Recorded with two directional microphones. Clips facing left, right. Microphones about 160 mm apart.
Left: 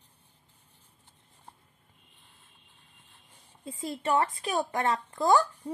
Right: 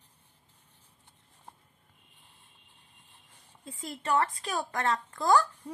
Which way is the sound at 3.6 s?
20° left (ahead or behind).